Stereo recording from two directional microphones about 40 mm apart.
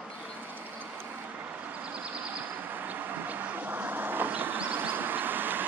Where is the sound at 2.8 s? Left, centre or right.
Right.